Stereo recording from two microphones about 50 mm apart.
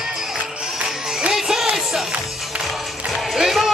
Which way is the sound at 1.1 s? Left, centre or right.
Centre.